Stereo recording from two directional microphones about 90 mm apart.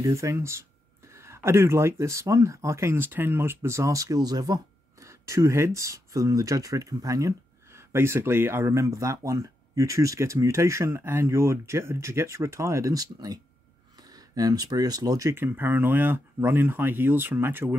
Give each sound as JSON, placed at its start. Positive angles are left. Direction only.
{"t": 0.0, "sound": "speech", "side_deg": -35}
{"t": 5.0, "sound": "speech", "side_deg": -35}
{"t": 15.2, "sound": "speech", "side_deg": -25}